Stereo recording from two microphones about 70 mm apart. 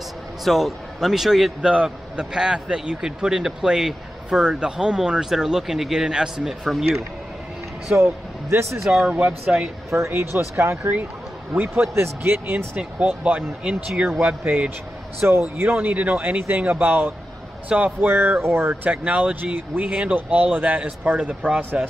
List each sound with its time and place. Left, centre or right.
0.4 s a man's voice: centre
1.6 s a man's voice: centre
7.9 s a man's voice: right
8.8 s a man's voice: centre
9.8 s speech: right
15.1 s speech: right
17.6 s a man's voice: centre
18.0 s speech: right
18.9 s speech: right